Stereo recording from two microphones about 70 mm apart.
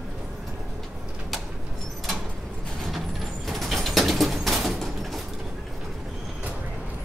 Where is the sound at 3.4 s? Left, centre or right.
Centre.